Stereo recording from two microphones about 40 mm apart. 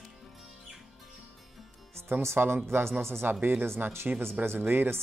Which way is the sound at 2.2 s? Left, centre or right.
Right.